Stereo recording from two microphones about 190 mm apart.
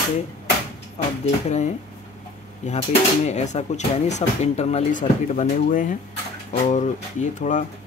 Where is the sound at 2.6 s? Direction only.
40° left (ahead or behind).